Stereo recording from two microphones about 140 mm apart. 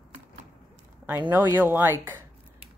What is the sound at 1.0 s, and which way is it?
Speech, 15° right (ahead or behind).